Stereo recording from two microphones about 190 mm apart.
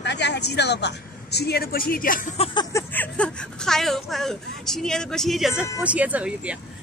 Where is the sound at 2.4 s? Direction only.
30° left (ahead or behind).